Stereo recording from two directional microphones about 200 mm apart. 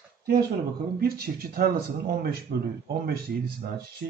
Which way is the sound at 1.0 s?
50° right (ahead or behind).